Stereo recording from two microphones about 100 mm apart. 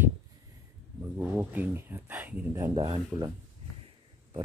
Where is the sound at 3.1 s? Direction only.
30° right (ahead or behind).